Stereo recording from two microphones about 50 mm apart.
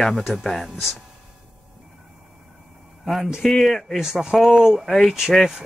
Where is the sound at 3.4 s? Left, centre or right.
Centre.